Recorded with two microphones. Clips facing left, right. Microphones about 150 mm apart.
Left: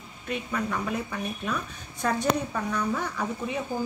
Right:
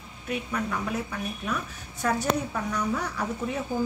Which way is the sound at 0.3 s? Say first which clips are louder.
Even; centre (ahead or behind).